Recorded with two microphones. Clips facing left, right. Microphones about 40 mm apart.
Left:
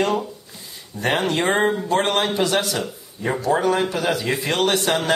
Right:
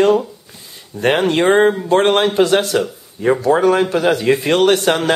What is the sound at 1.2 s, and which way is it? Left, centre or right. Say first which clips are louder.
Speech: right 8 dB; right.